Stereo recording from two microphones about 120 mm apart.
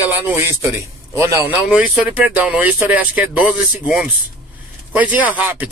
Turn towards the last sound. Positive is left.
turn(degrees=-15)  # may be behind; listen again after turning